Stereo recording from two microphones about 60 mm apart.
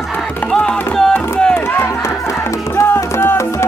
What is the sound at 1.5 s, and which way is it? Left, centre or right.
Run, left.